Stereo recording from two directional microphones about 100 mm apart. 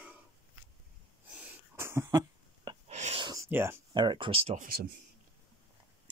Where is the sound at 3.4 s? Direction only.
25° right (ahead or behind).